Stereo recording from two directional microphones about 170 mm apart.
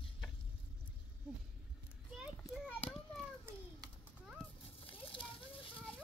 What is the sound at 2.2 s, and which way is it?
Children playing, 5° right (ahead or behind).